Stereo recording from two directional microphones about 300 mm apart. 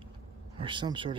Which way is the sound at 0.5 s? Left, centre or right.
Centre.